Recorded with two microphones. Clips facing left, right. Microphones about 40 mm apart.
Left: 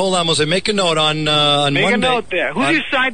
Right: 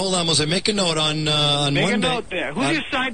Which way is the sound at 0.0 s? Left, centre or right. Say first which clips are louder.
Left 5 dB; left.